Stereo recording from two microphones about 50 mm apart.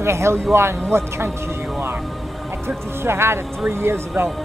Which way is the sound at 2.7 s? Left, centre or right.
Right.